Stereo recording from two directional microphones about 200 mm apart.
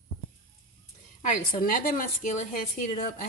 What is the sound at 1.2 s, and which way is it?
A woman's voice, 45° left (ahead or behind).